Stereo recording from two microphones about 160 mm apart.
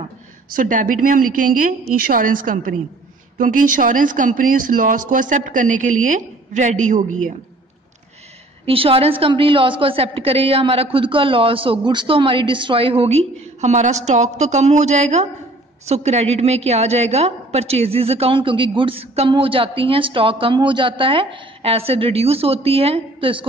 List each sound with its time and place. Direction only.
0.6 s a woman's voice: 55° right (ahead or behind)
8.6 s a woman's voice: 35° right (ahead or behind)